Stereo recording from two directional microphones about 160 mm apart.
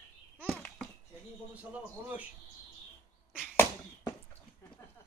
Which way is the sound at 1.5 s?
10° right (ahead or behind).